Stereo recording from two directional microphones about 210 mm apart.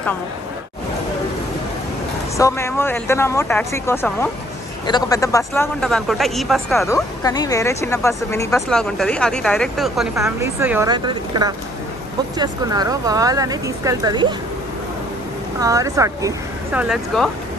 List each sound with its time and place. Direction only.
2.3 s a man's voice: 15° left (ahead or behind)
6.9 s speech: 15° left (ahead or behind)
8.5 s a man's voice: centre (ahead or behind)
10.1 s speech: 15° right (ahead or behind)
15.6 s speech: 15° right (ahead or behind)
16.8 s a man's voice: centre (ahead or behind)